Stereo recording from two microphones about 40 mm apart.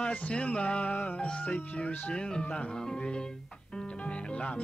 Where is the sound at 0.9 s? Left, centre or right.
Left.